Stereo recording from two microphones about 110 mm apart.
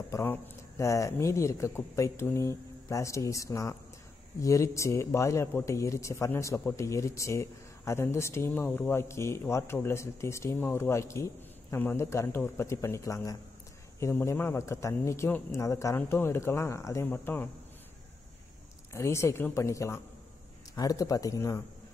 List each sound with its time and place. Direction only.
0.1 s speech: 20° left (ahead or behind)
18.9 s speech: 25° left (ahead or behind)